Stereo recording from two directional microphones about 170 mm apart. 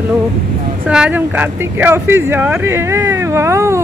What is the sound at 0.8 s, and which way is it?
Speech, 5° right (ahead or behind).